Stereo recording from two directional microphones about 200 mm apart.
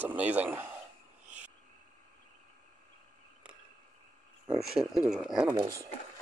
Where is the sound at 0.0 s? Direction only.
5° right (ahead or behind).